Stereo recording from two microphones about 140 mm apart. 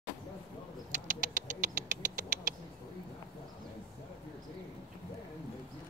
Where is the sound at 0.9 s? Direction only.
65° right (ahead or behind).